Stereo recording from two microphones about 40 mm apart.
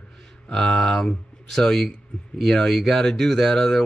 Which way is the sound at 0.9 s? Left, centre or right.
Centre.